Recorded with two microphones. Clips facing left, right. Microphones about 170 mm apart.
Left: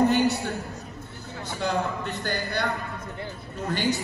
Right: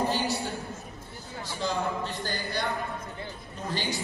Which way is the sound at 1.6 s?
60° left (ahead or behind).